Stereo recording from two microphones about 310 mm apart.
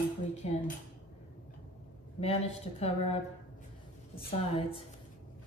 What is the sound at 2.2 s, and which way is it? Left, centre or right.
A woman's voice, centre.